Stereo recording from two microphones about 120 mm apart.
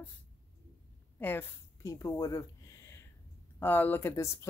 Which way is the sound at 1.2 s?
20° left (ahead or behind).